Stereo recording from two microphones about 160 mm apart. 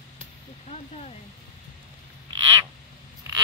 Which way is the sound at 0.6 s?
45° left (ahead or behind).